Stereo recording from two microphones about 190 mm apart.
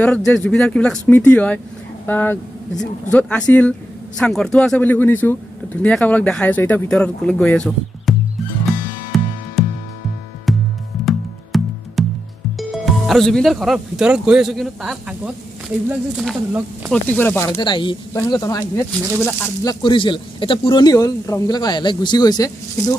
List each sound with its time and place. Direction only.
0.0 s speech: centre (ahead or behind)
9.1 s music: centre (ahead or behind)
10.5 s music: centre (ahead or behind)
12.5 s speech: centre (ahead or behind)
16.9 s speech: 10° left (ahead or behind)
17.6 s speech: 25° left (ahead or behind)
19.1 s speech: centre (ahead or behind)
19.6 s speech: 20° left (ahead or behind)